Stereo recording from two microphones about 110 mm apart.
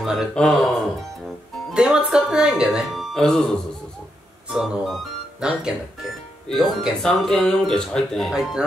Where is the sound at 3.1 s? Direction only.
5° left (ahead or behind).